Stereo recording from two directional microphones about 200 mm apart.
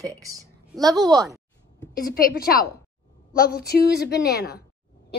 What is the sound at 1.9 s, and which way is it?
A woman's voice, 45° left (ahead or behind).